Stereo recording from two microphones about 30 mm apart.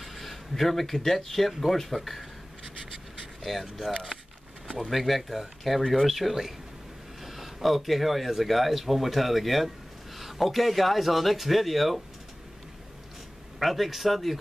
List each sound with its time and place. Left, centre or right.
0.0 s speech: centre
2.0 s speech: centre
3.4 s speech: centre
4.9 s speech: centre
13.6 s speech: centre